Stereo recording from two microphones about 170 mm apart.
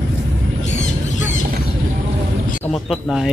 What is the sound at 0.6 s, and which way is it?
Squawk, 45° left (ahead or behind).